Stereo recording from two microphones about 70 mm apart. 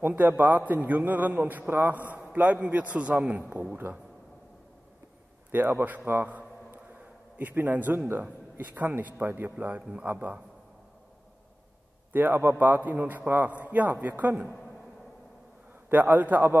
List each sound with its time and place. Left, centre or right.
0.0 s a man's voice: right
5.5 s a man's voice: right
12.1 s a man's voice: right
15.9 s a man's voice: right